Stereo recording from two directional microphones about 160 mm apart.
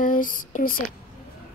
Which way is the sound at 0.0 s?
55° left (ahead or behind).